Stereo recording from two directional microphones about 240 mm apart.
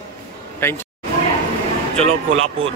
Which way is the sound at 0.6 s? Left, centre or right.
Centre.